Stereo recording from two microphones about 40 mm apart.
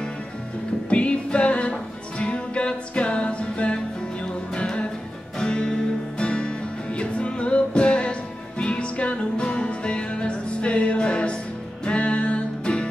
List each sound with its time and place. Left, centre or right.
0.8 s music: left